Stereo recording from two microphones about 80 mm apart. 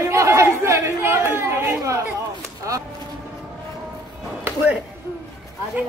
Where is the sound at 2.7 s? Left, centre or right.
Right.